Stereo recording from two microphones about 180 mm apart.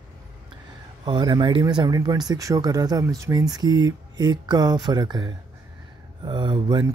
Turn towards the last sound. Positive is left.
turn(degrees=-25)  # may be behind; listen again after turning